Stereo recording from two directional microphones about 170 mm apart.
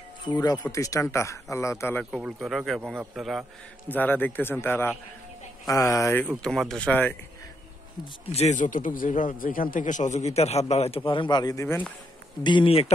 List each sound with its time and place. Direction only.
0.3 s speech: 25° left (ahead or behind)
2.0 s speech: centre (ahead or behind)
3.9 s speech: 10° left (ahead or behind)
6.4 s speech: 5° left (ahead or behind)
8.0 s speech: 35° left (ahead or behind)
11.0 s speech: 25° left (ahead or behind)
12.4 s speech: 30° left (ahead or behind)